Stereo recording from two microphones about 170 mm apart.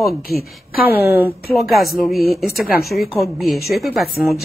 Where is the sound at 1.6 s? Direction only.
Centre (ahead or behind).